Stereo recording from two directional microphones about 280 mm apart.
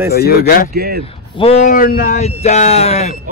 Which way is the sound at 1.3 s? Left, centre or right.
Left.